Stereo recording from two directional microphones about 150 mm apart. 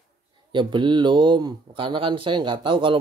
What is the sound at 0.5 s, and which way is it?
Speech, 30° right (ahead or behind).